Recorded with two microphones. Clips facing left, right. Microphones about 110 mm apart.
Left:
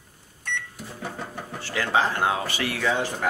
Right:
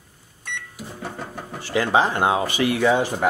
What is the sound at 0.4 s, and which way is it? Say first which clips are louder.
Microwave oven: left 1 dB; 10° right (ahead or behind).